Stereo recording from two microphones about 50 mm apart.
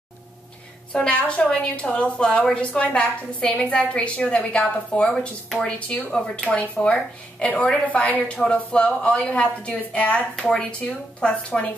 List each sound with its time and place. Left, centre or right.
0.9 s a woman's voice: centre
8.4 s speech: centre
8.7 s a woman's voice: left